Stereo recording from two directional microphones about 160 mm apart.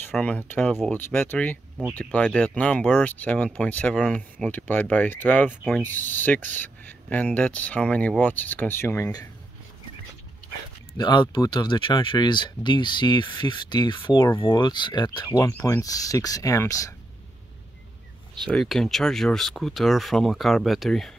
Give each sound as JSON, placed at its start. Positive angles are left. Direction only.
{"t": 0.1, "sound": "speech", "side_deg": 10}
{"t": 11.0, "sound": "speech", "side_deg": 30}
{"t": 18.5, "sound": "speech", "side_deg": 5}